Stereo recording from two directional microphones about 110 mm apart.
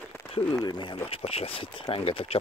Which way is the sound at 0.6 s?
40° left (ahead or behind).